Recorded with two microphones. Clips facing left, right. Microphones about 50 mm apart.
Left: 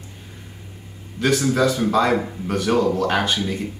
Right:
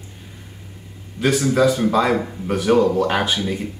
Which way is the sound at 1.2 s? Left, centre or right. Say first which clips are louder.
Right 2 dB; centre.